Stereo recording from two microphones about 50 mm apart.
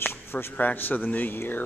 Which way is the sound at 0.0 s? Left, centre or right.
Left.